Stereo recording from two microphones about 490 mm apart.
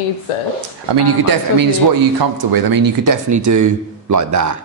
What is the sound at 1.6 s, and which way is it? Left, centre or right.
Speech, right.